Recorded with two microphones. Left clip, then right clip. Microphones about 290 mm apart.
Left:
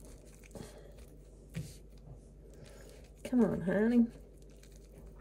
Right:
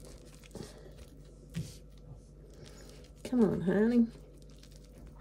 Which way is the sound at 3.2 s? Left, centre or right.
Centre.